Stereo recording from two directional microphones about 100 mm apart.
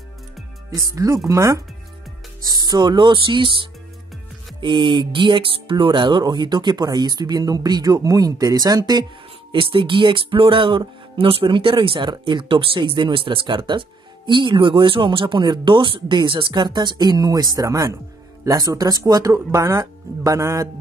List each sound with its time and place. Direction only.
0.9 s speech: 30° right (ahead or behind)
2.4 s speech: 45° right (ahead or behind)
9.5 s speech: 60° right (ahead or behind); by 20.6 s 35° right (ahead or behind)